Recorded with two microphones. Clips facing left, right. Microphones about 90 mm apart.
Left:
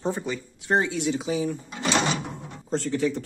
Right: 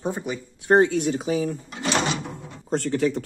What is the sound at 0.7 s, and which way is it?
Speech, 50° right (ahead or behind).